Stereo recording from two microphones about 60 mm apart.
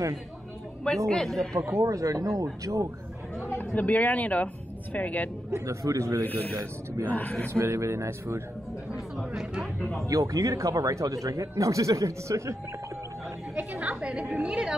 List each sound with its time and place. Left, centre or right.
0.8 s speech: centre
1.7 s speech: right
3.6 s speech: left
5.5 s speech: right
7.1 s speech: left
7.5 s speech: right
8.9 s speech: centre
10.0 s speech: right
13.7 s a woman's voice: centre